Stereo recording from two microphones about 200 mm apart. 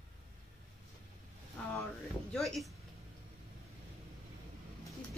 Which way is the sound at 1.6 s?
5° left (ahead or behind).